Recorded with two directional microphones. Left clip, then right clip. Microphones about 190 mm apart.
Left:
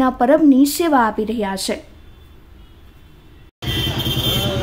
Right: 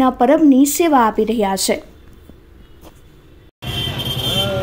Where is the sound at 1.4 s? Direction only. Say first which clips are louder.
Right 5 dB; 15° right (ahead or behind).